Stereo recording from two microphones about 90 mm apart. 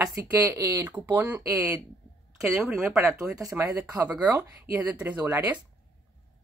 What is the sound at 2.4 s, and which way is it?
Speech, 10° right (ahead or behind).